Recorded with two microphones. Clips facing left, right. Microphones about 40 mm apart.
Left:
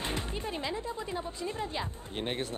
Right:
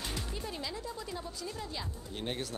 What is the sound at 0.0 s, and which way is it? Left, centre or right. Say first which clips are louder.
Speech: left 4 dB; left.